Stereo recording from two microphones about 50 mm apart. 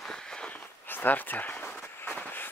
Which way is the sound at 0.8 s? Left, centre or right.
Left.